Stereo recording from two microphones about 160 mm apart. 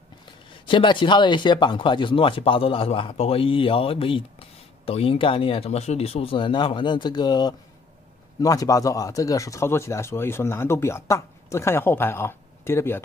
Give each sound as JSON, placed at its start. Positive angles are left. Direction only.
{"t": 0.7, "sound": "speech", "side_deg": 30}